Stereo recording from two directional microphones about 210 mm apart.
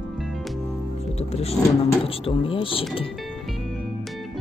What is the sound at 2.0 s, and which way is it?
Speech, 25° left (ahead or behind).